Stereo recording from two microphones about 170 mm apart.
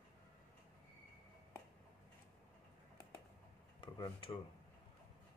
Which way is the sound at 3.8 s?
30° left (ahead or behind).